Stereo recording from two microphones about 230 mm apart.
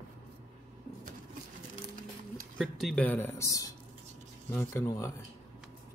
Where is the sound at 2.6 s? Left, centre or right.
Centre.